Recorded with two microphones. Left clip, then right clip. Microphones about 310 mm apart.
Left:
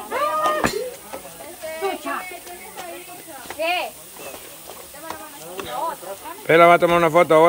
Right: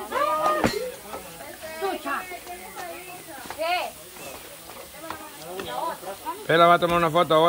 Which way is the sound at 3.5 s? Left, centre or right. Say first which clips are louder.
Left 3 dB; left.